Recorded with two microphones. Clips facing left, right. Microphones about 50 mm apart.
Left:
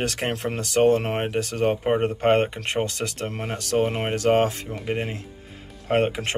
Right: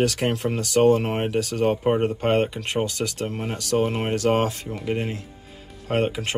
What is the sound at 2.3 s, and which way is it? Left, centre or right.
Speech, left.